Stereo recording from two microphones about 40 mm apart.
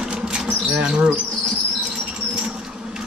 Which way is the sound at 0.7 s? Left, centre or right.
Right.